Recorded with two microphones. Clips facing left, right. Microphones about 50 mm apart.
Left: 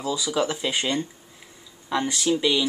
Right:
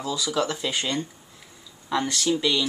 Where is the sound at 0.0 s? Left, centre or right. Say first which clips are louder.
Left 1 dB; centre.